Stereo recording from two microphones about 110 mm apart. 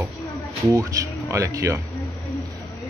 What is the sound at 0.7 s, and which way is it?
Speech, 30° right (ahead or behind).